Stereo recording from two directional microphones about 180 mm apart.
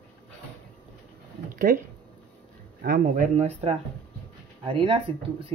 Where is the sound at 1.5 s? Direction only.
50° right (ahead or behind).